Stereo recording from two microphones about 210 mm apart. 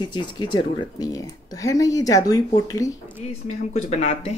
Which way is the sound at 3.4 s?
35° left (ahead or behind).